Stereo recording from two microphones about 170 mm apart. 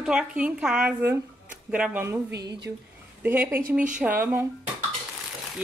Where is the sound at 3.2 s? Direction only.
10° right (ahead or behind).